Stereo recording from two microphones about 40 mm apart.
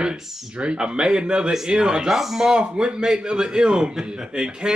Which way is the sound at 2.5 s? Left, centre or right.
Right.